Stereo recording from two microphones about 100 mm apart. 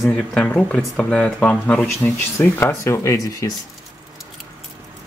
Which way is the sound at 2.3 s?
30° left (ahead or behind).